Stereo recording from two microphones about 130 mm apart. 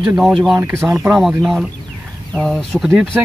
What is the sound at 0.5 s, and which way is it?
Speech, 20° right (ahead or behind).